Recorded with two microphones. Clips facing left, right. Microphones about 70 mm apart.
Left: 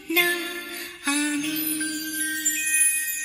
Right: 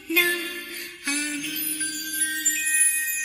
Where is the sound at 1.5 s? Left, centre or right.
Left.